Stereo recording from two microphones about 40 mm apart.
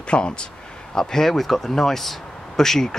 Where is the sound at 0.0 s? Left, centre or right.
Left.